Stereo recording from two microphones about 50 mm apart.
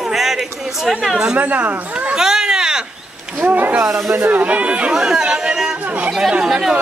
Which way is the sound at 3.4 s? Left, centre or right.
Right.